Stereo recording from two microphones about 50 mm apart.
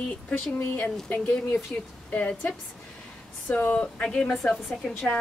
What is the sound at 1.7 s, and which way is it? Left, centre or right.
A woman's voice, left.